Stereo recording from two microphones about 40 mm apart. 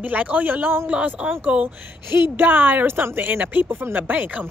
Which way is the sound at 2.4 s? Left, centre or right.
Right.